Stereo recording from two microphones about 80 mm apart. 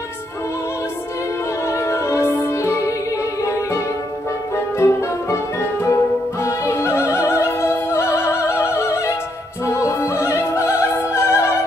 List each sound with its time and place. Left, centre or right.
1.7 s music: left
11.1 s opera: left